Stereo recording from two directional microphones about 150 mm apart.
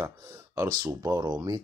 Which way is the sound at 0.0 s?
20° right (ahead or behind).